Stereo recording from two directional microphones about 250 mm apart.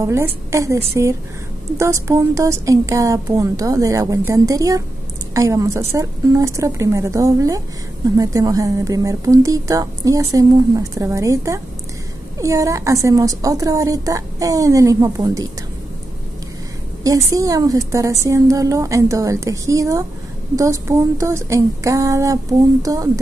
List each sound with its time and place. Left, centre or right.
0.0 s a woman's voice: centre
17.0 s a woman's voice: centre